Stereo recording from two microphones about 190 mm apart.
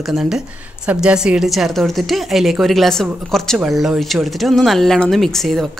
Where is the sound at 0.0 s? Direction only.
Centre (ahead or behind).